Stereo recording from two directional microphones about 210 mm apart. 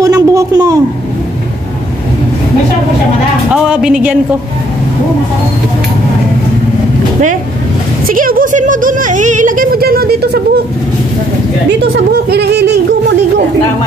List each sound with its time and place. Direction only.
0.0 s a sound: 15° right (ahead or behind)
3.5 s a woman's voice: 5° right (ahead or behind)
8.1 s speech: 40° right (ahead or behind)
11.8 s speech: 50° right (ahead or behind)